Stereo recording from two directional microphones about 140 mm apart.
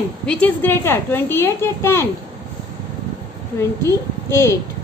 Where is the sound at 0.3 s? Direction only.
10° left (ahead or behind).